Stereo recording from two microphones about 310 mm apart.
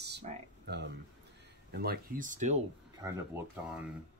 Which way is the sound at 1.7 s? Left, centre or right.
Right.